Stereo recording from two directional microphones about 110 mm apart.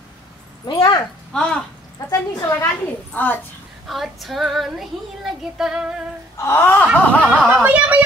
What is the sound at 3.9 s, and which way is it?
Child singing, centre (ahead or behind).